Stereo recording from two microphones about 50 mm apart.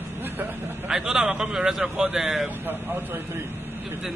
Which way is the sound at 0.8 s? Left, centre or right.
Centre.